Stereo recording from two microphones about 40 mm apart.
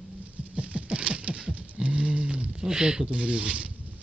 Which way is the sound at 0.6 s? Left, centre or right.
Right.